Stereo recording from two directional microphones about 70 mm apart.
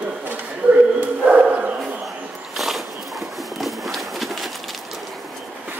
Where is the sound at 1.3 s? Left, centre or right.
Centre.